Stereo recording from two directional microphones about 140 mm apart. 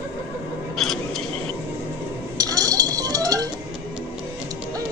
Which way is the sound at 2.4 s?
25° right (ahead or behind).